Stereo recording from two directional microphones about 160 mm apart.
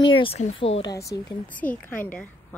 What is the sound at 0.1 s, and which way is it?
Speech, 35° left (ahead or behind).